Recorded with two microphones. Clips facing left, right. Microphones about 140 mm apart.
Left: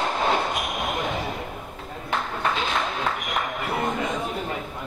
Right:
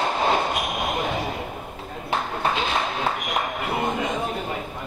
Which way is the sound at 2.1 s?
25° right (ahead or behind).